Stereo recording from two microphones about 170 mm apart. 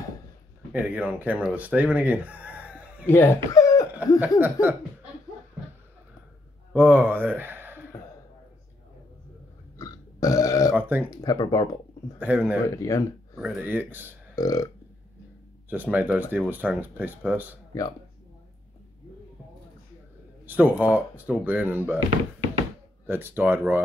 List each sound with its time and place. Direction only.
0.7 s speech: 10° right (ahead or behind)
3.1 s speech: 15° left (ahead or behind)
4.4 s speech: 10° right (ahead or behind)
6.7 s speech: 10° right (ahead or behind)
9.8 s burping: 20° left (ahead or behind)
10.7 s speech: 10° right (ahead or behind)
11.1 s speech: 25° left (ahead or behind)
12.2 s speech: 10° right (ahead or behind)
12.6 s speech: 20° left (ahead or behind)
13.4 s speech: 10° right (ahead or behind)
14.3 s burping: 20° left (ahead or behind)
15.7 s speech: 10° right (ahead or behind)
20.4 s speech: 10° right (ahead or behind)
23.0 s speech: 10° right (ahead or behind)